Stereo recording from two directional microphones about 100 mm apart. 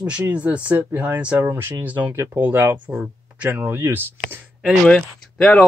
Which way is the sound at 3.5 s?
20° right (ahead or behind).